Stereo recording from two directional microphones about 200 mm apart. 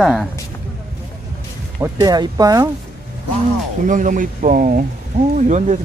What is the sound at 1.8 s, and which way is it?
Speech, 20° right (ahead or behind).